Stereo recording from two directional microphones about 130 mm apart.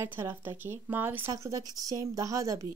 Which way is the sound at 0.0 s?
15° right (ahead or behind).